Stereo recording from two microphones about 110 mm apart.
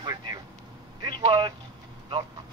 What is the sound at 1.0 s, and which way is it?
Speech, 50° right (ahead or behind).